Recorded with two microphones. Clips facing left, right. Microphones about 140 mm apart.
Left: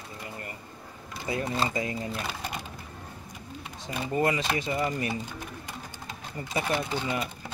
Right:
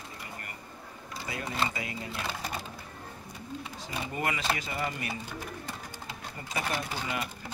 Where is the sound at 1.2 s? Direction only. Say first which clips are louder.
Left 4 dB; 25° left (ahead or behind).